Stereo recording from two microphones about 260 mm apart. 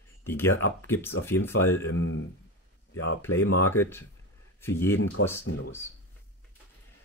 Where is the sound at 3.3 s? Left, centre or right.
Left.